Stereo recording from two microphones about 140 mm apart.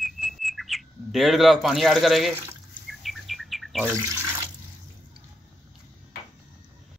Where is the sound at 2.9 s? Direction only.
Centre (ahead or behind).